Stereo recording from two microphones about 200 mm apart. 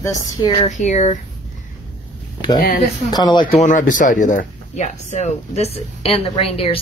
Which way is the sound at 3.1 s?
20° left (ahead or behind).